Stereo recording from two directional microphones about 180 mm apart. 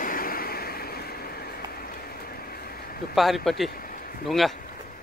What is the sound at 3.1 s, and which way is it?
Speech, centre (ahead or behind).